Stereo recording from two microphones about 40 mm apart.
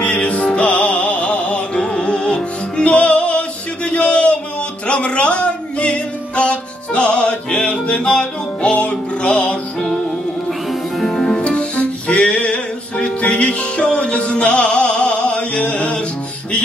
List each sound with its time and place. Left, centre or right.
0.0 s music: left
1.8 s music: centre
4.8 s speech: left
8.7 s music: left
11.1 s music: centre
11.3 s music: left